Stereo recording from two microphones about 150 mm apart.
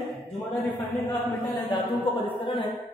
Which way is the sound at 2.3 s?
30° left (ahead or behind).